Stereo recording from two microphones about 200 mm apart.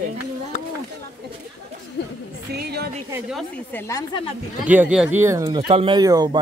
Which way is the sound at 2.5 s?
55° right (ahead or behind).